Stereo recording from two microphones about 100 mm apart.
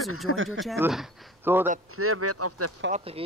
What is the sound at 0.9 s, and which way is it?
Speech, 5° right (ahead or behind).